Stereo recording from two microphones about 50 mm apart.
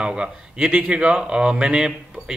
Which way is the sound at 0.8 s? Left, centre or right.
Centre.